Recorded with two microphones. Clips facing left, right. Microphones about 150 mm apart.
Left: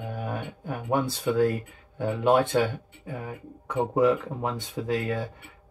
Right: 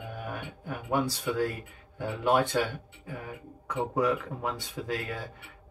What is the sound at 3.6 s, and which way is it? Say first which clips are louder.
Speech: left 5 dB; 25° left (ahead or behind).